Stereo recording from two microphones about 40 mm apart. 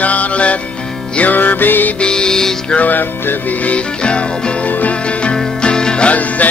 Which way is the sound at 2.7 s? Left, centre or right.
Left.